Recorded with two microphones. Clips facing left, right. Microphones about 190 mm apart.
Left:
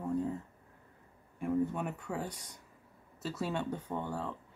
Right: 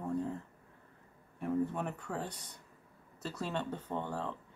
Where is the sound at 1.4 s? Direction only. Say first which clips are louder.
Left 1 dB; 5° left (ahead or behind).